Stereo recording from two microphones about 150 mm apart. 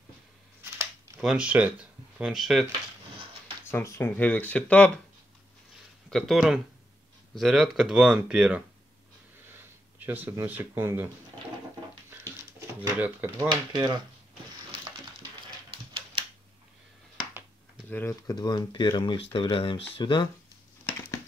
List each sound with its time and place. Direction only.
1.2 s speech: 5° right (ahead or behind)
3.7 s speech: 20° left (ahead or behind)
6.0 s speech: centre (ahead or behind)
9.9 s speech: 10° right (ahead or behind)
12.1 s a sound: 15° right (ahead or behind)
13.7 s speech: 30° right (ahead or behind)
17.8 s speech: 15° left (ahead or behind); by 20.2 s 30° left (ahead or behind)